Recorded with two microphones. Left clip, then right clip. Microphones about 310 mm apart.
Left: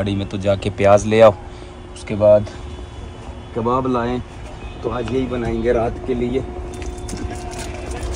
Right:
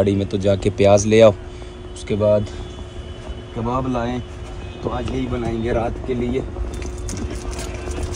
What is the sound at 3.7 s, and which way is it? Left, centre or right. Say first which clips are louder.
Speech: left 4 dB; left.